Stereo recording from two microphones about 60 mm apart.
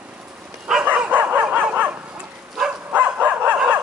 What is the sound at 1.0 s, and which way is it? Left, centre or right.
Dog, right.